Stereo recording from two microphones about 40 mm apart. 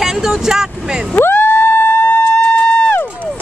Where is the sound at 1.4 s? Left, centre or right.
Left.